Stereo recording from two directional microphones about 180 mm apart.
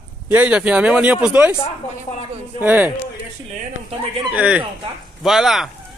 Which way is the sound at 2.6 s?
10° right (ahead or behind).